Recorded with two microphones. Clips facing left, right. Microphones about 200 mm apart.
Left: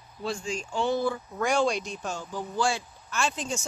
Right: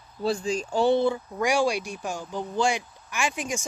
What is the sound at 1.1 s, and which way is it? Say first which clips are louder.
Speech: right 2 dB; 10° right (ahead or behind).